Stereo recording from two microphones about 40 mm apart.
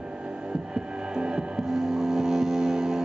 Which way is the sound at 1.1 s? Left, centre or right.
Right.